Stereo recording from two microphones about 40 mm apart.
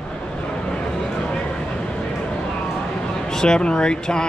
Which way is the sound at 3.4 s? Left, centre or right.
Left.